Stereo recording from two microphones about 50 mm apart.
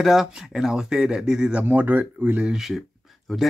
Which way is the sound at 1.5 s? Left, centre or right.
Right.